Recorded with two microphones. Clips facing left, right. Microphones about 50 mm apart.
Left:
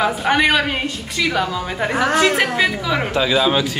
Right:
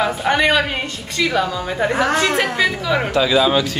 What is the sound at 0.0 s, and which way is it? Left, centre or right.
Speech, centre.